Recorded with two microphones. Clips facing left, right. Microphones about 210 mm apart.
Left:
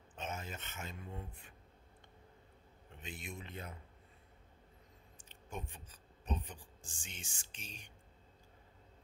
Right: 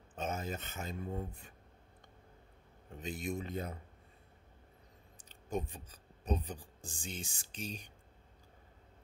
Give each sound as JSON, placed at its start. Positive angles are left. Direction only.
{"t": 0.1, "sound": "speech", "side_deg": -40}
{"t": 3.0, "sound": "a man's voice", "side_deg": -40}
{"t": 5.1, "sound": "speech", "side_deg": -35}